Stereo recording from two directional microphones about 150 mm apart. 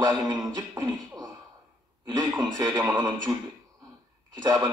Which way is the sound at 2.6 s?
25° right (ahead or behind).